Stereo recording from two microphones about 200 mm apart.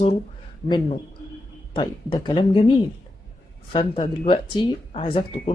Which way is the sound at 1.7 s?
20° left (ahead or behind).